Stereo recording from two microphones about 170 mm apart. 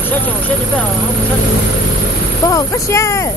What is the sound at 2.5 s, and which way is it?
Speech, 20° left (ahead or behind).